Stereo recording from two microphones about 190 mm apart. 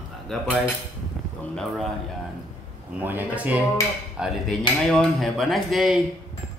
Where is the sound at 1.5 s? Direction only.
Centre (ahead or behind).